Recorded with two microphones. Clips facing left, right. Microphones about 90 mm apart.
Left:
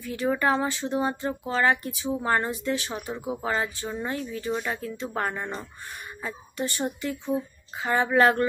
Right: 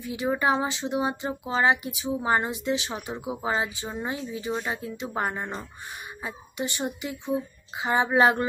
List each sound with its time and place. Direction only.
0.0 s speech: 15° right (ahead or behind)